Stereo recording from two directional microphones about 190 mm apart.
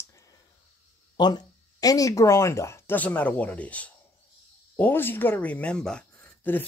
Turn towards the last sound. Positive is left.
turn(degrees=10)  # may be behind; listen again after turning